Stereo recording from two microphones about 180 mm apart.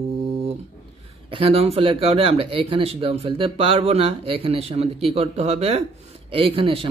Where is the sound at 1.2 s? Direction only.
30° right (ahead or behind).